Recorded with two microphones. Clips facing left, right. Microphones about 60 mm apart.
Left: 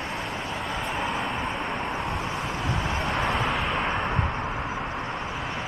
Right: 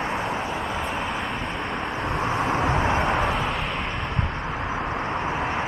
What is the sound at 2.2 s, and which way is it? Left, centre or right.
Vehicle, right.